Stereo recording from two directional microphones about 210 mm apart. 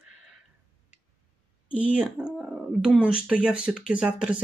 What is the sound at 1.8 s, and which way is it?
Speech, 5° right (ahead or behind).